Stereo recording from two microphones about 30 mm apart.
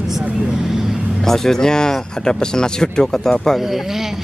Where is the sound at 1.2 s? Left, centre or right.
Centre.